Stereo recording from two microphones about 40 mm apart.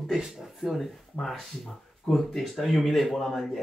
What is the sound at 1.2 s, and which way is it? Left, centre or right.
Speech, left.